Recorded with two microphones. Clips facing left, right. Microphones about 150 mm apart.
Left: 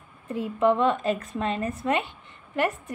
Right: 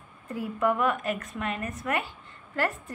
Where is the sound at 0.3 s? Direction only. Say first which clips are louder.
Left 4 dB; 25° left (ahead or behind).